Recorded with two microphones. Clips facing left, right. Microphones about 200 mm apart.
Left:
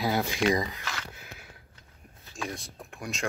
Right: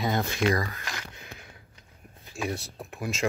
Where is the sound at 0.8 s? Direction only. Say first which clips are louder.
Even; 15° right (ahead or behind).